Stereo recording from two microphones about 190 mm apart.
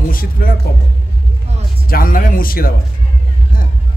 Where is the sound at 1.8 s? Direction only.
50° left (ahead or behind).